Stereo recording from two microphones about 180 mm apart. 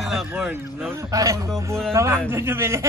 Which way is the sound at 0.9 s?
20° right (ahead or behind).